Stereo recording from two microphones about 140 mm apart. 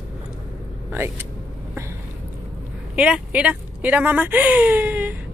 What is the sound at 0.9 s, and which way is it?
Speech, 15° right (ahead or behind).